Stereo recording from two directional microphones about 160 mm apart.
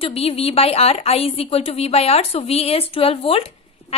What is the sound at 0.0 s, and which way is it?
A woman's voice, 40° left (ahead or behind).